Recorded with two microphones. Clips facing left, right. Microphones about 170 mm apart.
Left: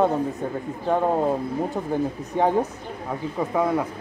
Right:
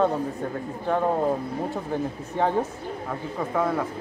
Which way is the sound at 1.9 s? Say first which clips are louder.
Left 3 dB; 15° left (ahead or behind).